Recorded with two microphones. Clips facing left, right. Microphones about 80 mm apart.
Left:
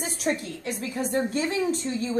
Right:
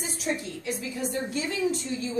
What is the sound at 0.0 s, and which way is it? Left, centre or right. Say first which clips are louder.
A woman's voice: left 3 dB; left.